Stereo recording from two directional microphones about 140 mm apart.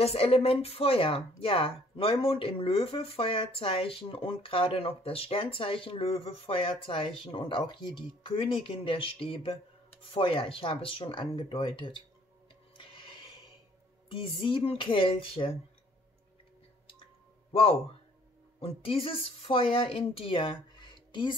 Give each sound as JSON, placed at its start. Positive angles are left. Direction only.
{"t": 0.0, "sound": "speech", "side_deg": 45}
{"t": 12.7, "sound": "music", "side_deg": 35}
{"t": 14.0, "sound": "speech", "side_deg": 40}
{"t": 17.5, "sound": "speech", "side_deg": 45}